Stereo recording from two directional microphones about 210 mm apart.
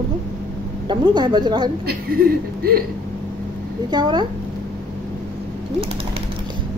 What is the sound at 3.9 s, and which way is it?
Speech, 20° right (ahead or behind).